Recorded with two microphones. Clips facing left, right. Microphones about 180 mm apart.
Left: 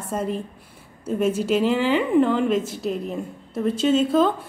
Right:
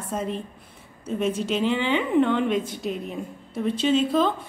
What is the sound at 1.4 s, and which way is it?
A woman's voice, 5° left (ahead or behind).